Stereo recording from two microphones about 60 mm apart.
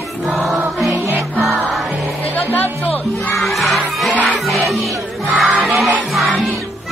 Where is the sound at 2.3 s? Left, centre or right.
Left.